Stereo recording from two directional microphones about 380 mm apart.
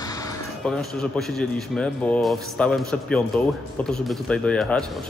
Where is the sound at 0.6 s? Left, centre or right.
Centre.